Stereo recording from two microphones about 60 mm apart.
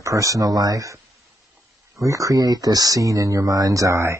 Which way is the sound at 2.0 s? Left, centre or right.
Right.